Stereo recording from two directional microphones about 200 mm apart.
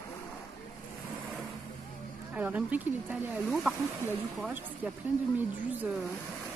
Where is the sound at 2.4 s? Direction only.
5° right (ahead or behind).